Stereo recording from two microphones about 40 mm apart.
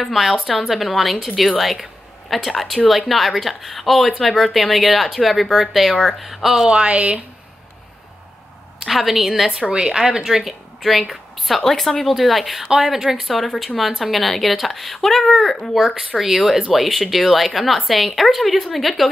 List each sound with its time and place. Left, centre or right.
0.0 s a woman's voice: centre
5.9 s speech: centre
6.2 s a woman's voice: centre
6.6 s speech: right
6.9 s speech: right
8.8 s a woman's voice: centre